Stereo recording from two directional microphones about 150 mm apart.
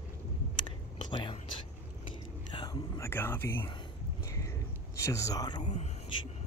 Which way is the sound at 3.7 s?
25° left (ahead or behind).